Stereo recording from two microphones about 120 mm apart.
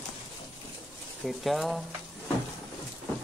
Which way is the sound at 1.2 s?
Centre (ahead or behind).